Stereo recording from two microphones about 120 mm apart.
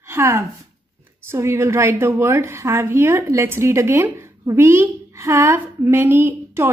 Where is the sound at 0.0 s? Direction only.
20° right (ahead or behind).